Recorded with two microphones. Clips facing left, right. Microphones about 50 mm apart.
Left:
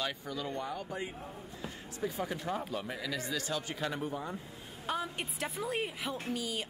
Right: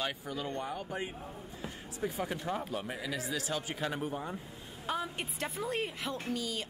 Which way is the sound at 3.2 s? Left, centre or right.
Centre.